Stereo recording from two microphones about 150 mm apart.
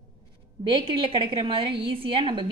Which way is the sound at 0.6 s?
35° right (ahead or behind).